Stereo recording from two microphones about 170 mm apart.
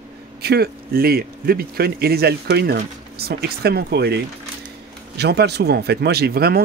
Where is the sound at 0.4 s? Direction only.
70° right (ahead or behind).